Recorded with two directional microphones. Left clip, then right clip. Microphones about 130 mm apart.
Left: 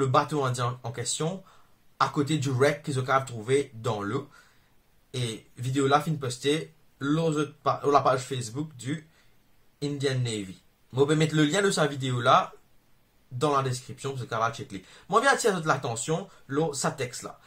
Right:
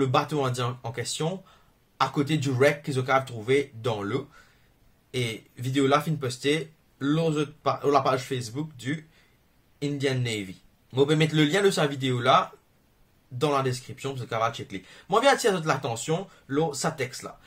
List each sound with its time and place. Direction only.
0.0 s a man's voice: 20° right (ahead or behind)